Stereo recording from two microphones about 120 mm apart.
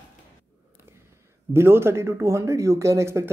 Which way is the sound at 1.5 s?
20° right (ahead or behind).